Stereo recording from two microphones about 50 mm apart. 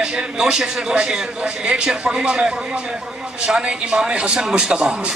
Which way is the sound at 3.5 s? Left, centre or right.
Centre.